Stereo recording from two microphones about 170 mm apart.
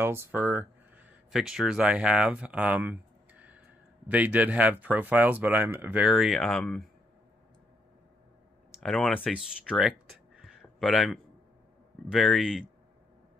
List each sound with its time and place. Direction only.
0.0 s speech: 15° right (ahead or behind); by 6.8 s 5° left (ahead or behind)
8.7 s speech: centre (ahead or behind)